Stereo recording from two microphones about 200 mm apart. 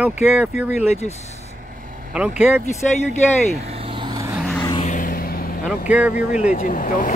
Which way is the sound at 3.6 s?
30° right (ahead or behind).